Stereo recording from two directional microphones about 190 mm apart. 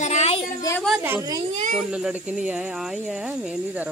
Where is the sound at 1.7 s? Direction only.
5° right (ahead or behind).